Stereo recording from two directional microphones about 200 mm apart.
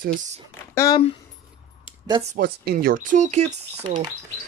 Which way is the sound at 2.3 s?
50° right (ahead or behind).